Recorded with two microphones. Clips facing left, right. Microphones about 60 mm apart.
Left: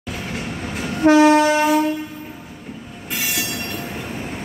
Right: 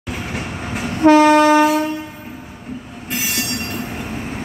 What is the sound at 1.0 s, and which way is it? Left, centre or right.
Train, right.